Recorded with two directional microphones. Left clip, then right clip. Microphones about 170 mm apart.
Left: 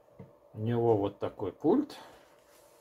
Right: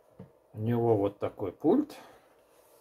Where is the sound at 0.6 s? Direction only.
10° right (ahead or behind).